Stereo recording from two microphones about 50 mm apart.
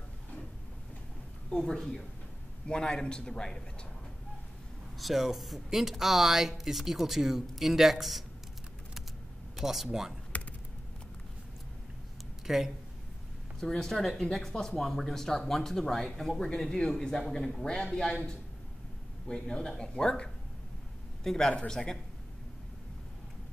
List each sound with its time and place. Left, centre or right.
1.5 s speech: centre
4.9 s speech: centre
9.6 s speech: centre
10.3 s a sound: left
12.4 s speech: centre
13.6 s a man's voice: centre